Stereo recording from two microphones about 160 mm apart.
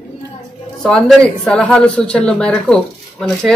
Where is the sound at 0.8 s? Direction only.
5° left (ahead or behind).